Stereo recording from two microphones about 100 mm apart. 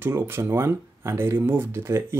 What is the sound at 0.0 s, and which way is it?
Speech, 25° right (ahead or behind).